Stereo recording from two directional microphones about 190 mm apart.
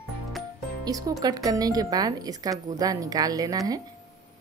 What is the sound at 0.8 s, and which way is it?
Speech, 20° right (ahead or behind).